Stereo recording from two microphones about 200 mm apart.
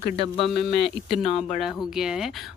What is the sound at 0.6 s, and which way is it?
Speech, 55° left (ahead or behind).